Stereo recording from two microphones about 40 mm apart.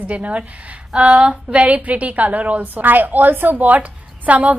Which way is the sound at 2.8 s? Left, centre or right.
Right.